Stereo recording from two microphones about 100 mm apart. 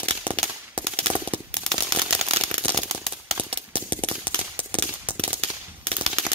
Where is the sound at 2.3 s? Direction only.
70° right (ahead or behind).